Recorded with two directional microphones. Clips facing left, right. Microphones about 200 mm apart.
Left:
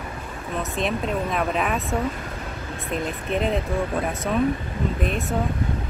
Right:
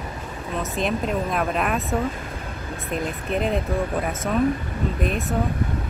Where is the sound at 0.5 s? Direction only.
Centre (ahead or behind).